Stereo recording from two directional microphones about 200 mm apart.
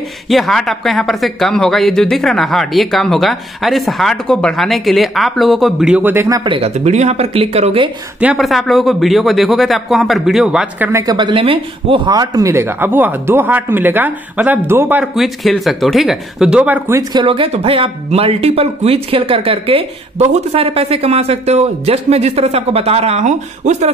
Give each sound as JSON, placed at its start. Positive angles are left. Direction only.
{"t": 0.3, "sound": "speech", "side_deg": 0}
{"t": 8.2, "sound": "a man's voice", "side_deg": -5}
{"t": 17.2, "sound": "speech", "side_deg": -25}